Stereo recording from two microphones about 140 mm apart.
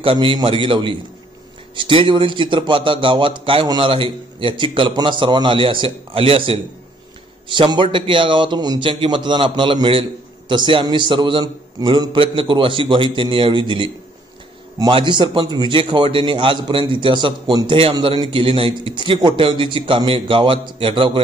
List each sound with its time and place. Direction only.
0.0 s a man's voice: 40° right (ahead or behind)